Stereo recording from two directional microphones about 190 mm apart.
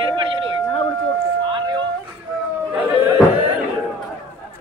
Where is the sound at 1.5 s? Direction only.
25° right (ahead or behind).